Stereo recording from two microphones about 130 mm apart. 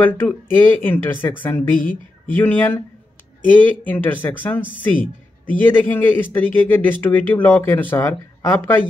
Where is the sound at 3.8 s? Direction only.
15° left (ahead or behind).